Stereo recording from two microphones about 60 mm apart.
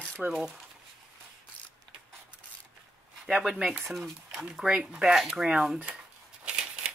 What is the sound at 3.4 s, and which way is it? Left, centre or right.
Speech, centre.